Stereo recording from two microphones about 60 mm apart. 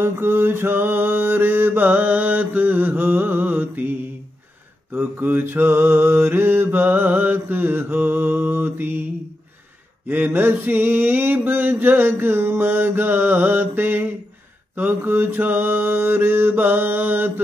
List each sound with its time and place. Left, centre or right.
0.0 s mantra: right
4.9 s mantra: right
10.0 s mantra: right